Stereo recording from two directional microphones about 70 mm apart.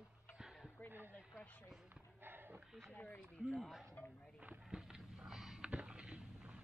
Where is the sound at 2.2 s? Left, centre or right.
Right.